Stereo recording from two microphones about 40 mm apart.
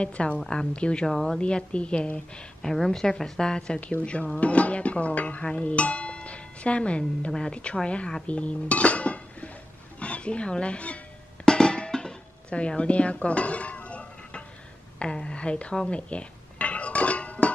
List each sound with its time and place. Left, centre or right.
0.0 s a woman's voice: left
1.0 s speech: centre
1.4 s a woman's voice: left
2.6 s a woman's voice: centre; by 4.3 s left
4.4 s music: left
8.3 s speech: left
11.4 s music: left
12.5 s speech: left
15.0 s a sound: left